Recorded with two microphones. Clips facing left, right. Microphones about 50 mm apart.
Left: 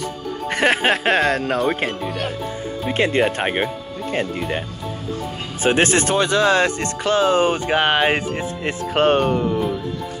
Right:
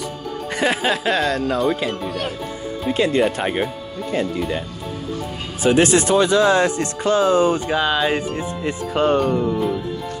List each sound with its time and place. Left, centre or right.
0.5 s speech: left
2.0 s speech: centre
2.9 s speech: left
5.6 s speech: left